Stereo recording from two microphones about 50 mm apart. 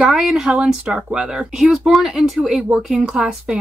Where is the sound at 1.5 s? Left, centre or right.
Centre.